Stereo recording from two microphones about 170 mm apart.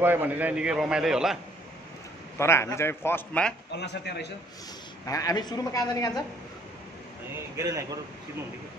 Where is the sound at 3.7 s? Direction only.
80° left.